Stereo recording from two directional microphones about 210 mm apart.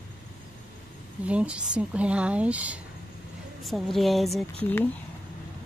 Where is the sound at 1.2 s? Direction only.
5° right (ahead or behind).